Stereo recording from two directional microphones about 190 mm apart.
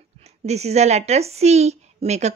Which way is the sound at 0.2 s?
35° right (ahead or behind).